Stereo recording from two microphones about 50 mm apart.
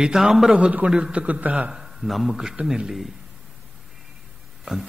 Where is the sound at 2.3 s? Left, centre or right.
Centre.